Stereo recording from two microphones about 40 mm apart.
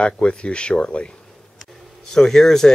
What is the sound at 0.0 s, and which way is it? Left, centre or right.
Speech, left.